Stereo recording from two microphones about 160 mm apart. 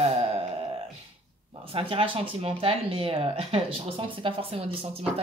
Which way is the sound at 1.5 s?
35° right (ahead or behind).